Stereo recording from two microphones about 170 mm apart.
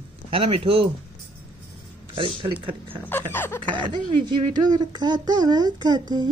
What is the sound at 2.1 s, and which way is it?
Speech, 30° right (ahead or behind).